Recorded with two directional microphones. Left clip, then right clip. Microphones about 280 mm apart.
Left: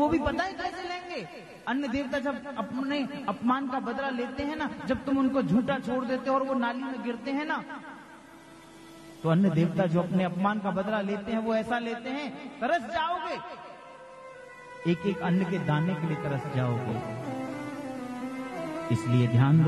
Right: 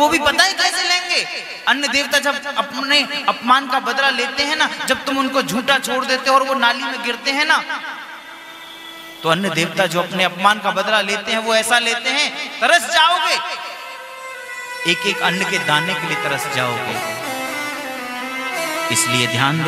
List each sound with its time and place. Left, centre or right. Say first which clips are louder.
0.1 s a man's voice: right 14 dB; centre
9.3 s a man's voice: right 10 dB; centre
14.8 s speech: right 13 dB; centre
18.2 s music: right 15 dB; centre